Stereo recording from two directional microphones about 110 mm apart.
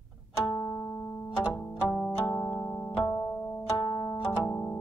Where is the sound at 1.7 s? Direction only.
Centre (ahead or behind).